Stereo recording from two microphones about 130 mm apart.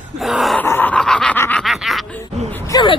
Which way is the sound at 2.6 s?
30° left (ahead or behind).